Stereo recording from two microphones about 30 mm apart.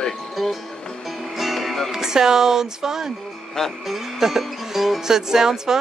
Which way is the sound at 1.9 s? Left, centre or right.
Centre.